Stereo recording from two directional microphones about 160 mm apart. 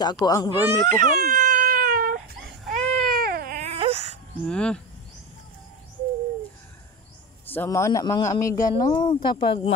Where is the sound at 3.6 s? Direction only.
40° right (ahead or behind).